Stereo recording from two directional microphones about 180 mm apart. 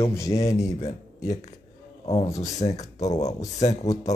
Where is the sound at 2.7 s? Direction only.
40° left (ahead or behind).